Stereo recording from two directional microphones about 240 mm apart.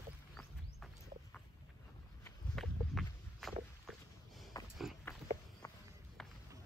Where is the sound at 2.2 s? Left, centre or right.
Centre.